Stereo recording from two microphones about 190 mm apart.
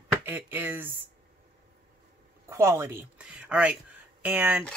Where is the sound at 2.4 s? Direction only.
15° right (ahead or behind).